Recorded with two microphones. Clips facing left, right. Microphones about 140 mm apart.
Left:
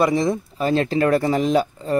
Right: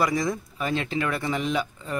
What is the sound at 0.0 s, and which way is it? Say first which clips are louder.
Speech: left 6 dB; 25° left (ahead or behind).